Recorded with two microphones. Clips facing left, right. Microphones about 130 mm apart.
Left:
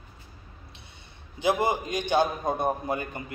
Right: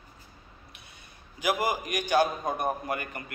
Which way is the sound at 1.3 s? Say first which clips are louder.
Left 3 dB; 25° left (ahead or behind).